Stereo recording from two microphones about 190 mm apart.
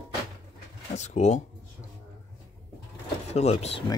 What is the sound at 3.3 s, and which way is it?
Speech, 35° left (ahead or behind).